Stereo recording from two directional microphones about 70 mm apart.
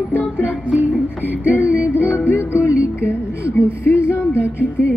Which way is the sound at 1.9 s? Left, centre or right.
Left.